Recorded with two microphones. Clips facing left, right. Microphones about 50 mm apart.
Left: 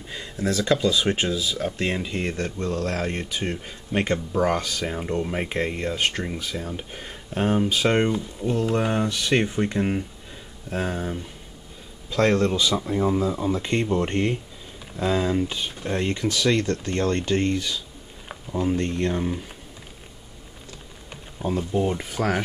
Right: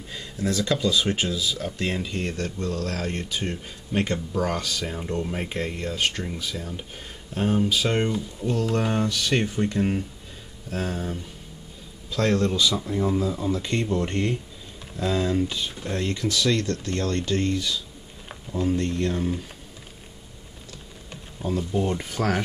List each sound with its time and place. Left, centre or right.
0.1 s a sound: left
0.5 s speech: left
12.1 s speech: left
18.5 s speech: centre
18.8 s speech: left
21.1 s speech: centre